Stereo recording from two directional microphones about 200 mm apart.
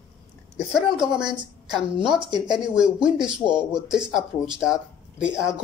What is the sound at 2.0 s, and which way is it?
Speech, 25° right (ahead or behind).